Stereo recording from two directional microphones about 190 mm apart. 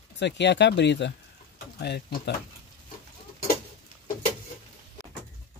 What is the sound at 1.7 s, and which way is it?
Speech, 55° left (ahead or behind).